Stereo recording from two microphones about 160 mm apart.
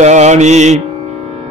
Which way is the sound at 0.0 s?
45° right (ahead or behind).